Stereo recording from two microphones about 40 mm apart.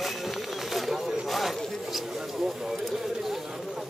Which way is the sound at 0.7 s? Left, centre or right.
Centre.